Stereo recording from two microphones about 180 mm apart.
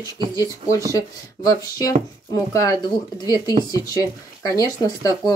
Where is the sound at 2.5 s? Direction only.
20° left (ahead or behind).